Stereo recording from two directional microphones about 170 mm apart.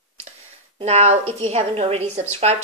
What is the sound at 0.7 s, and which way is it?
A woman's voice, 40° right (ahead or behind).